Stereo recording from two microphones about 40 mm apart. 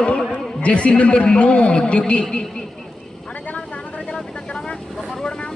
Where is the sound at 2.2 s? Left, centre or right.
Centre.